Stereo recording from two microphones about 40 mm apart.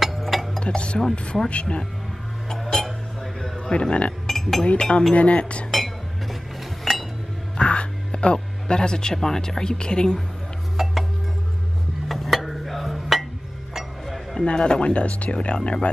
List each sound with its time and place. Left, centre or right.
0.0 s a sound: centre
0.6 s dishes: left
1.1 s speech: left
2.5 s a sound: centre
3.7 s speech: left
4.3 s chink: centre
4.7 s speech: left
6.8 s chink: centre
7.5 s music: left
9.1 s speech: centre
10.8 s music: centre
12.1 s music: centre
14.3 s speech: left